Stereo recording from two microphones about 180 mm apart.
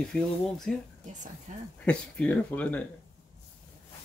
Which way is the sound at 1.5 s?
45° right (ahead or behind).